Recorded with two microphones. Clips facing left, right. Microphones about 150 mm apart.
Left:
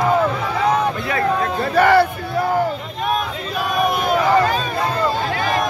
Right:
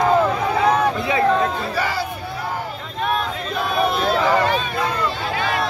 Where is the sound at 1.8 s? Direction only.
60° left (ahead or behind).